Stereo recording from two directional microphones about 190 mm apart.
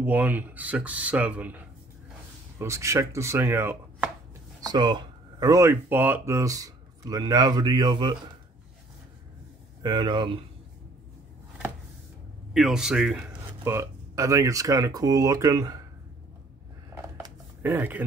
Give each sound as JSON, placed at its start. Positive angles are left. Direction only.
{"t": 0.0, "sound": "speech", "side_deg": -10}
{"t": 9.8, "sound": "speech", "side_deg": -25}
{"t": 12.5, "sound": "speech", "side_deg": 0}
{"t": 16.9, "sound": "a sound", "side_deg": -10}